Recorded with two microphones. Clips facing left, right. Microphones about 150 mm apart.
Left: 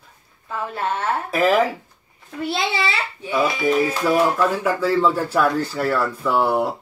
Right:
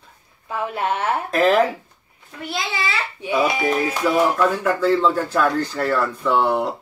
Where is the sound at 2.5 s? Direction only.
30° left (ahead or behind).